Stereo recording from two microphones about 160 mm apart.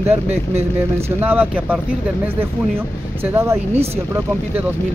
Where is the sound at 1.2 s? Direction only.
10° right (ahead or behind).